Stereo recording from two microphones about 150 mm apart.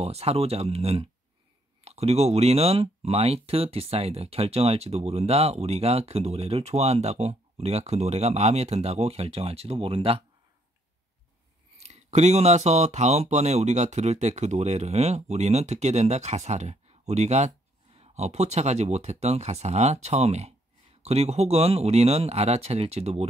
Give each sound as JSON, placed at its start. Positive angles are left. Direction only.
{"t": 0.0, "sound": "speech", "side_deg": -45}
{"t": 11.8, "sound": "speech", "side_deg": -45}